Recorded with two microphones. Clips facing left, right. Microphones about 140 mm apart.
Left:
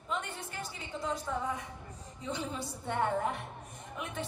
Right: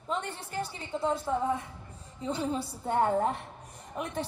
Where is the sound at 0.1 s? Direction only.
35° right (ahead or behind).